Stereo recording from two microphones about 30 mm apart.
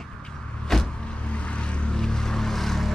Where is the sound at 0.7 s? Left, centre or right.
Centre.